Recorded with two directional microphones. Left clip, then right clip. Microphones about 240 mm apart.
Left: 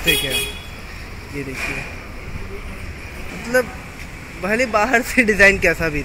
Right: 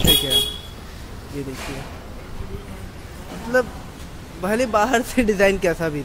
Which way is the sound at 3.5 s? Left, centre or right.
Centre.